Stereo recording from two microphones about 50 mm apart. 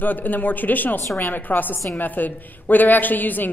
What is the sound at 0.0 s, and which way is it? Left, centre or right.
A woman's voice, left.